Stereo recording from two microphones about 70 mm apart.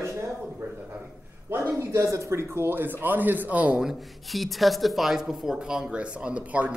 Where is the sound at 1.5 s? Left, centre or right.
Right.